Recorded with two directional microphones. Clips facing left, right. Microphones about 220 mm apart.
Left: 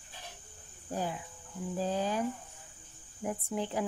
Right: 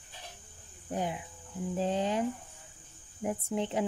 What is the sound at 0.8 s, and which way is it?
Speech, 20° right (ahead or behind).